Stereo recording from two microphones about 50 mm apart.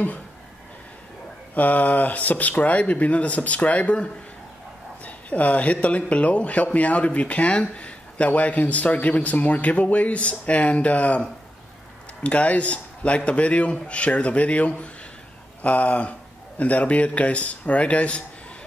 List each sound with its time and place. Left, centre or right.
1.5 s speech: left